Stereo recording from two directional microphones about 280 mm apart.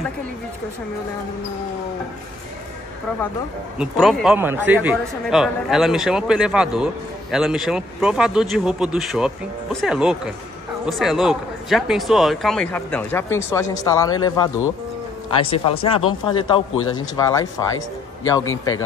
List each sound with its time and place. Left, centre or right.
3.7 s a man's voice: centre
16.7 s a man's voice: left
17.2 s speech: centre
18.4 s a man's voice: left